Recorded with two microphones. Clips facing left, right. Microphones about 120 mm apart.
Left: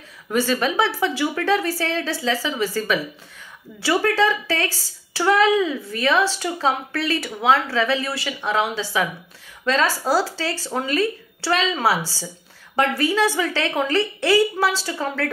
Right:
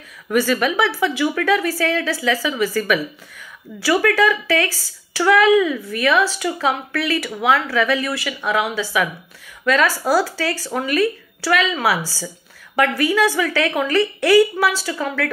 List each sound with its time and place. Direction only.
0.3 s speech: 25° left (ahead or behind)